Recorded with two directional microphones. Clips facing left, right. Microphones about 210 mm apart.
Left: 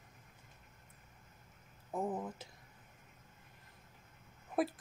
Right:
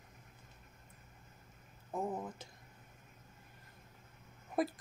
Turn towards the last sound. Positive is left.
turn(degrees=5)  # may be behind; listen again after turning